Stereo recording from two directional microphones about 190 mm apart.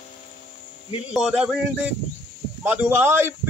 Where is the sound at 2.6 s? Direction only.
10° right (ahead or behind).